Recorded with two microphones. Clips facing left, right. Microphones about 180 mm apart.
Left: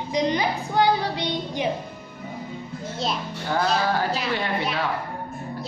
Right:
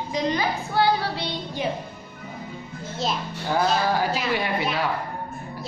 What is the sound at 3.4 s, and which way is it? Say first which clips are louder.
Speech: right 1 dB; 10° right (ahead or behind).